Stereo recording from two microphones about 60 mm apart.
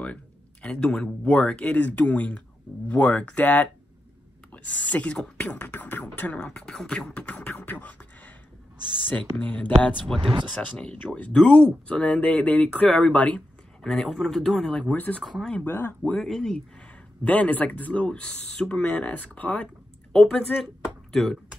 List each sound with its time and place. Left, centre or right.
0.0 s a sound: left
0.9 s speech: centre
13.8 s speech: centre
15.2 s speech: centre
15.6 s speech: left
16.2 s speech: centre
17.2 s speech: left
20.1 s speech: centre
20.5 s speech: centre
21.1 s speech: centre